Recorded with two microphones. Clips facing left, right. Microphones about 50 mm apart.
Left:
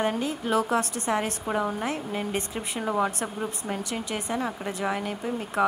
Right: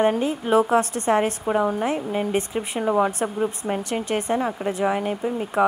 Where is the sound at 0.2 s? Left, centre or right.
Right.